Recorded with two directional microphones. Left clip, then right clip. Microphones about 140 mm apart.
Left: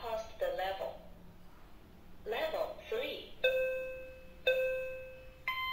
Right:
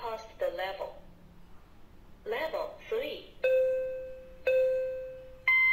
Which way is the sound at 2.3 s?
35° right (ahead or behind).